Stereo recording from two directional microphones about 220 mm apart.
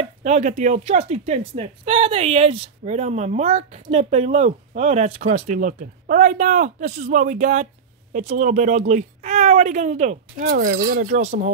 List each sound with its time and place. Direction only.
0.2 s a woman's voice: 30° right (ahead or behind)